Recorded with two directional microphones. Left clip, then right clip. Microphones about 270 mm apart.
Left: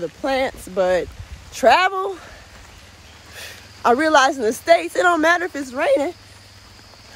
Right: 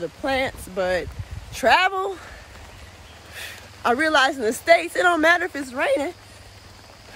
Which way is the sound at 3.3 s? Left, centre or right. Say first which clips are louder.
Even; centre.